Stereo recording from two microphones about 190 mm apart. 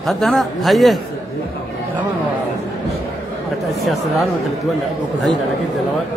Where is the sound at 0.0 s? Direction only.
Centre (ahead or behind).